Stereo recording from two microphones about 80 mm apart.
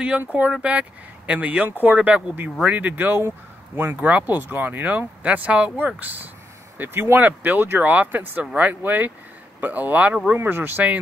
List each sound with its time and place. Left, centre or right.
0.2 s speech: centre